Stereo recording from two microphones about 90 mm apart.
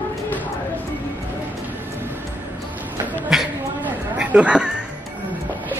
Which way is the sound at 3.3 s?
5° right (ahead or behind).